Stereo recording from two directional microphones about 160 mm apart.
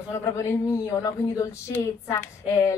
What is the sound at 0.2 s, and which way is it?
Speech, 20° left (ahead or behind).